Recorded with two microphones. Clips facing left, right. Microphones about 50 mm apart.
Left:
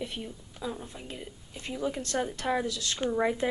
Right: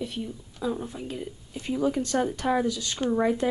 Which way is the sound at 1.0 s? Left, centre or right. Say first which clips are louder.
Right 7 dB; centre.